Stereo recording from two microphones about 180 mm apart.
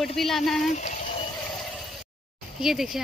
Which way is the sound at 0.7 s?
40° left (ahead or behind).